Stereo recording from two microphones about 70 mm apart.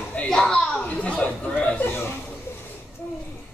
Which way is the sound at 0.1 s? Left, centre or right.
Centre.